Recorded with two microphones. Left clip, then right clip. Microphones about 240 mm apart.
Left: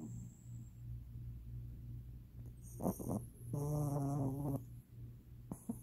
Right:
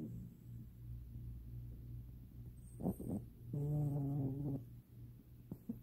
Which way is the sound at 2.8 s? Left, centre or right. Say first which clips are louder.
Left 3 dB; centre.